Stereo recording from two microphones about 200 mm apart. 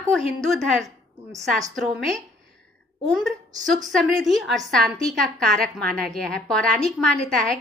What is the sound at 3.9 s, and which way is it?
A woman's voice, centre (ahead or behind).